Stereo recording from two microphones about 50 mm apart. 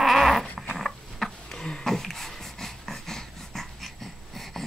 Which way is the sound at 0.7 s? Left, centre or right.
Centre.